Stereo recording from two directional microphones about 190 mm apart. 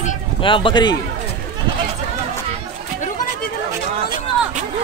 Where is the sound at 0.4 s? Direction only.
25° left (ahead or behind).